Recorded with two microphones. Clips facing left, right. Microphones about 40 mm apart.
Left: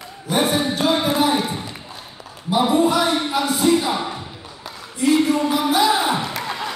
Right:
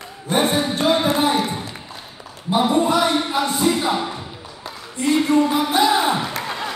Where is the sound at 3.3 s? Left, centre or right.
Right.